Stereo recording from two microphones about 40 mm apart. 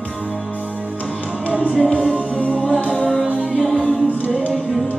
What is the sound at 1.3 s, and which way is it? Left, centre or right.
Music, right.